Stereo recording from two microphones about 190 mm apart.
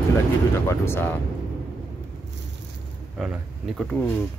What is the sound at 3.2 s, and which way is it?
Speech, 5° right (ahead or behind).